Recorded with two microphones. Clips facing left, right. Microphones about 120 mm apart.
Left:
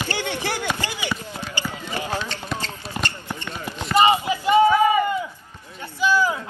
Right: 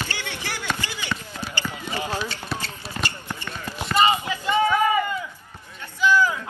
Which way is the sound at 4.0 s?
20° left (ahead or behind).